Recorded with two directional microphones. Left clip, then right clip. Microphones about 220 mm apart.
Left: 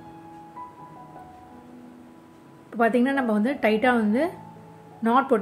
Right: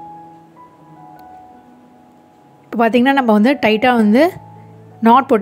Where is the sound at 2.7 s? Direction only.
40° right (ahead or behind).